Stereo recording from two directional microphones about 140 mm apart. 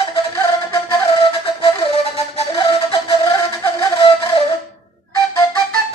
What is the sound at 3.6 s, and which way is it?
Music, 25° left (ahead or behind).